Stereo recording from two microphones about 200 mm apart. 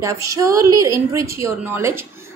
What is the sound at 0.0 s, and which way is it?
A woman's voice, 15° right (ahead or behind).